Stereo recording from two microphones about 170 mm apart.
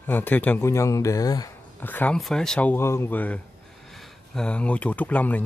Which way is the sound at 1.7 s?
10° left (ahead or behind).